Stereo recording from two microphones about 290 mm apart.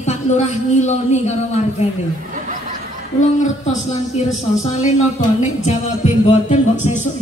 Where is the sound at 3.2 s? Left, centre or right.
Left.